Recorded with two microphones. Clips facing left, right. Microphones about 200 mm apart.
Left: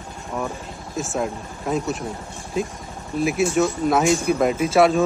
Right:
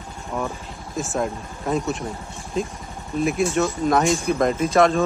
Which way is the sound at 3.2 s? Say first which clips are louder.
Left 1 dB; centre (ahead or behind).